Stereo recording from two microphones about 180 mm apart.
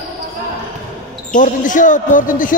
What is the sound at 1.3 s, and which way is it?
Speech, 45° left (ahead or behind).